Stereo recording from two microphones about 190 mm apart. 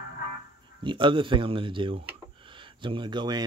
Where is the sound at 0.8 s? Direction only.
25° right (ahead or behind).